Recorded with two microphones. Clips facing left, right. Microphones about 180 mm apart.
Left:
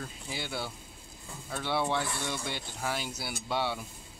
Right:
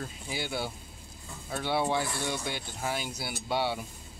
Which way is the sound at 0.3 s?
5° right (ahead or behind).